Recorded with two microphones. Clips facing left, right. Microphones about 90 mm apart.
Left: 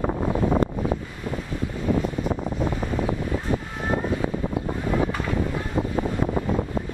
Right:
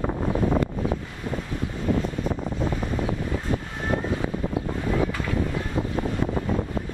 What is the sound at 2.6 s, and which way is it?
Wind noise, 15° left (ahead or behind).